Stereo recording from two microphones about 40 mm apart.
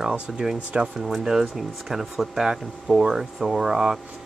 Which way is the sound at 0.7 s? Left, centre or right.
Right.